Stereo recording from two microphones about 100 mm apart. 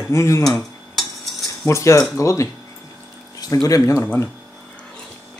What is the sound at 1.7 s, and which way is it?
Speech, 30° left (ahead or behind).